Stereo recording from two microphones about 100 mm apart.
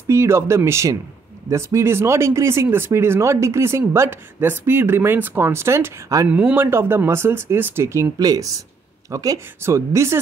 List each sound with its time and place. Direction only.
0.1 s speech: 25° right (ahead or behind)
6.2 s speech: 15° right (ahead or behind)